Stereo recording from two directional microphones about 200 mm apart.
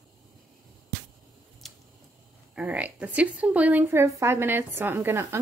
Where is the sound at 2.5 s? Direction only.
5° right (ahead or behind).